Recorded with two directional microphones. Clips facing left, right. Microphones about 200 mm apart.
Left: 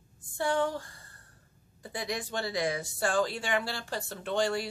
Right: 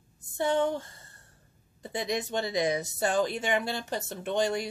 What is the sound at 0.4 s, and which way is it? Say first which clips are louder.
Speech: right 3 dB; 20° right (ahead or behind).